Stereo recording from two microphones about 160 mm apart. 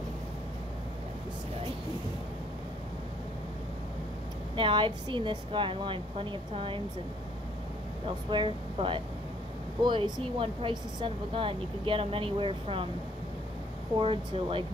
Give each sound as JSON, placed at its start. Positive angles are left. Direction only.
{"t": 4.6, "sound": "a woman's voice", "side_deg": -30}
{"t": 8.3, "sound": "a woman's voice", "side_deg": -30}
{"t": 13.9, "sound": "a woman's voice", "side_deg": -35}